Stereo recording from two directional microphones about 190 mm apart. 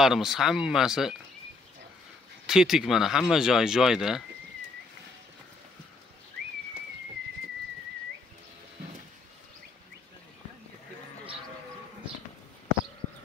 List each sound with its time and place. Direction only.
0.0 s speech: centre (ahead or behind)
2.4 s speech: centre (ahead or behind)